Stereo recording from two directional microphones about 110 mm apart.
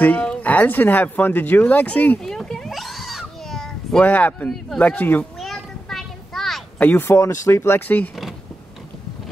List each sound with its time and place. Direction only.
0.0 s speech: 15° left (ahead or behind)
2.2 s a sound: 5° left (ahead or behind)
4.0 s speech: 15° left (ahead or behind)
5.4 s a sound: centre (ahead or behind)
6.8 s speech: 15° left (ahead or behind)
7.1 s speech: 30° left (ahead or behind)